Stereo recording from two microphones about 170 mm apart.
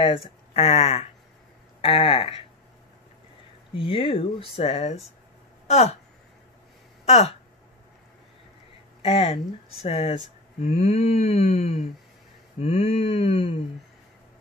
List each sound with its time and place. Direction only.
0.0 s speech: 35° left (ahead or behind)
3.7 s speech: 30° left (ahead or behind)
7.1 s speech: 40° left (ahead or behind)
9.0 s speech: 35° left (ahead or behind)